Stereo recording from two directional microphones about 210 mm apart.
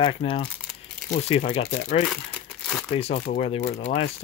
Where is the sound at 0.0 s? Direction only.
25° left (ahead or behind).